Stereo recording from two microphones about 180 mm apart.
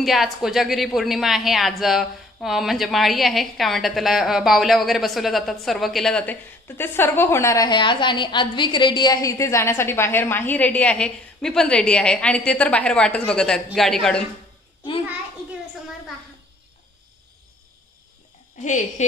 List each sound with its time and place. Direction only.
0.0 s a woman's voice: centre (ahead or behind)
18.6 s speech: 40° left (ahead or behind)